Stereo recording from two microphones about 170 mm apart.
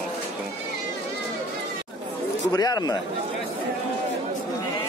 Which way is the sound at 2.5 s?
25° left (ahead or behind).